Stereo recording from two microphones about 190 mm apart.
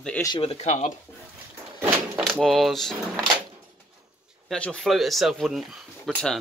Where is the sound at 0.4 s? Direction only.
35° left (ahead or behind).